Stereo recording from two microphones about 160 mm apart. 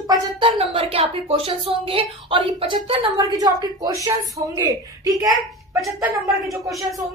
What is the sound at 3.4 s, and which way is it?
A woman's voice, 25° right (ahead or behind).